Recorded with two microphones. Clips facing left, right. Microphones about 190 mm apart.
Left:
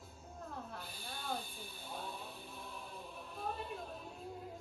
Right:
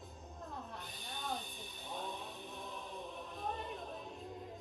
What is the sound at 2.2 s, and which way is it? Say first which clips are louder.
Music: right 2 dB; 20° right (ahead or behind).